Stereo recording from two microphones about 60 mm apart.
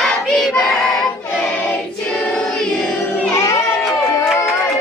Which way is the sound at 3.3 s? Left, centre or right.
Left.